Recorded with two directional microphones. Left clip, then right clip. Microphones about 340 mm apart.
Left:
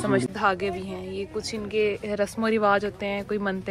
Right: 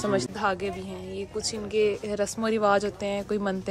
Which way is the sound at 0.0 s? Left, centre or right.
Centre.